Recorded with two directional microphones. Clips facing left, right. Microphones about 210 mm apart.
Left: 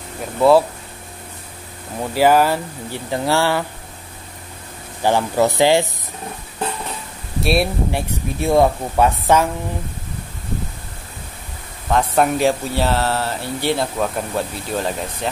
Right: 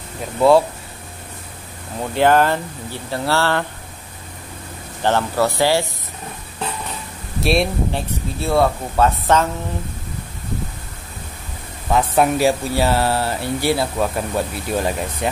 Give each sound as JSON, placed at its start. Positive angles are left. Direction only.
{"t": 0.4, "sound": "speech", "side_deg": 0}
{"t": 2.0, "sound": "speech", "side_deg": 5}
{"t": 5.0, "sound": "speech", "side_deg": 15}
{"t": 7.3, "sound": "speech", "side_deg": 0}
{"t": 11.9, "sound": "speech", "side_deg": -5}